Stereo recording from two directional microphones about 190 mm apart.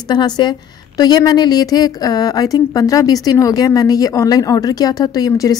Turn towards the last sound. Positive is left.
turn(degrees=20)  # may be behind; listen again after turning